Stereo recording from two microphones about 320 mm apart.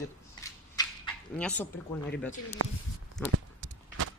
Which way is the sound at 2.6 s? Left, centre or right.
Right.